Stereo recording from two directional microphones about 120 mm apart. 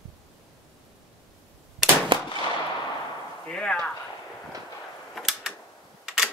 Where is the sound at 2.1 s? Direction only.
45° right (ahead or behind).